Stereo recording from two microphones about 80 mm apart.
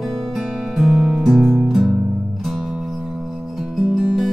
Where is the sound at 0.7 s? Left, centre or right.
Centre.